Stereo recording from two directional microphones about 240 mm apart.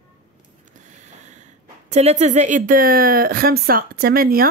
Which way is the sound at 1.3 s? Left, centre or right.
Right.